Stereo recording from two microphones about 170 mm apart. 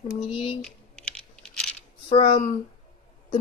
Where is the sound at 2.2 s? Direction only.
55° left (ahead or behind).